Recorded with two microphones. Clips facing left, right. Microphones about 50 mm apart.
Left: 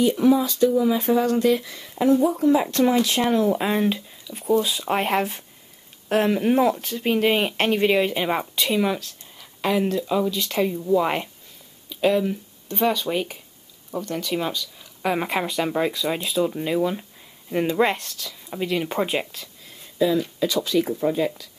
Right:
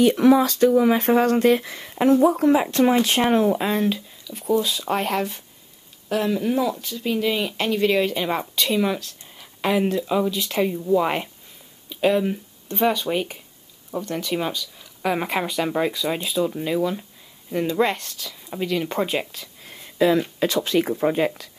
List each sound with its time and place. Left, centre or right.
0.0 s speech: right
2.2 s speech: right
2.5 s speech: centre
3.0 s speech: right
3.5 s speech: centre
4.9 s speech: left
6.0 s speech: left
7.8 s speech: centre
8.6 s speech: centre
9.4 s speech: centre
18.0 s speech: centre
20.2 s speech: right